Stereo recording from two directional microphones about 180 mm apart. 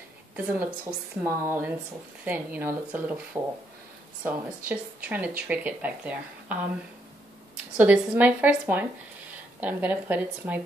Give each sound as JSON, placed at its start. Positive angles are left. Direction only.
{"t": 0.6, "sound": "speech", "side_deg": -10}
{"t": 7.7, "sound": "speech", "side_deg": -10}